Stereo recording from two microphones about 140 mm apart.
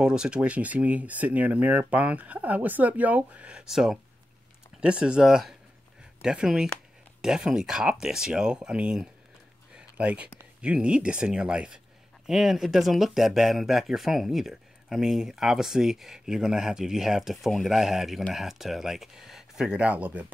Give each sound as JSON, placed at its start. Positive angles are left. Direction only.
{"t": 0.0, "sound": "speech", "side_deg": -5}
{"t": 9.8, "sound": "a sound", "side_deg": -10}
{"t": 10.6, "sound": "speech", "side_deg": -5}